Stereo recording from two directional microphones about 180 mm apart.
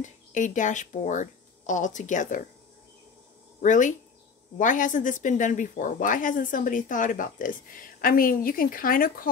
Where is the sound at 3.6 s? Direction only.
45° left (ahead or behind).